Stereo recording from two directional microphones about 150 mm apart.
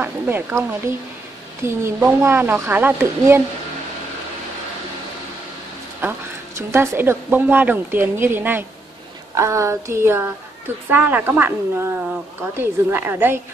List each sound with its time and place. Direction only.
0.0 s a woman's voice: 15° right (ahead or behind)
6.0 s a woman's voice: 15° right (ahead or behind)